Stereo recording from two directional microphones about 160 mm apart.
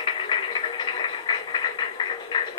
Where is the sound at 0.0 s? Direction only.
30° left (ahead or behind).